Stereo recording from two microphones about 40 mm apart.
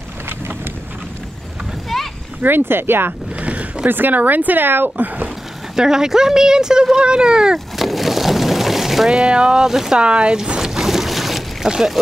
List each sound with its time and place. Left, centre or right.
1.9 s boat: centre
2.4 s speech: right
3.1 s vehicle: right
3.8 s speech: right
4.9 s speech: right
5.8 s speech: centre
7.5 s a sound: centre
9.1 s speech: right
9.7 s speech: centre
9.9 s boat: right; by 11.7 s centre